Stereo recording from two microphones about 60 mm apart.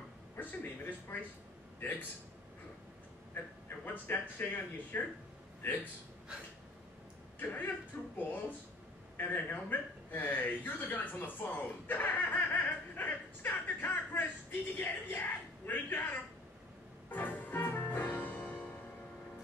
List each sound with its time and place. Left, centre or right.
0.4 s a man's voice: left
3.6 s a man's voice: left
7.3 s a man's voice: left
9.1 s a man's voice: left
17.1 s music: left